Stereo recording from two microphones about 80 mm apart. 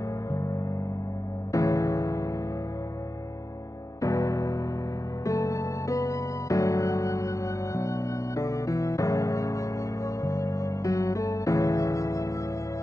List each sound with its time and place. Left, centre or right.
1.5 s music: left
4.0 s music: left